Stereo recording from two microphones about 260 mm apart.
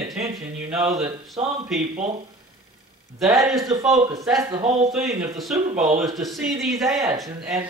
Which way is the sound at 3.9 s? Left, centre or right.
Centre.